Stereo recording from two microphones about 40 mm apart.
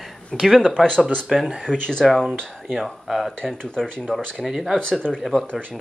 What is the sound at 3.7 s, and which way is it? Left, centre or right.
Speech, centre.